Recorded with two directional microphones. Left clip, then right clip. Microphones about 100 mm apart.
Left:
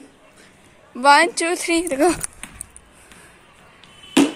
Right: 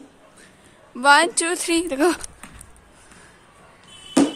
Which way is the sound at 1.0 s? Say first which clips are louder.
Left 2 dB; 15° left (ahead or behind).